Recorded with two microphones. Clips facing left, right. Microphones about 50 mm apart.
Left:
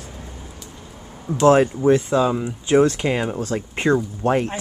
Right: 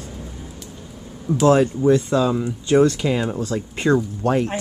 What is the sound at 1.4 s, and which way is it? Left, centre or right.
Speech, left.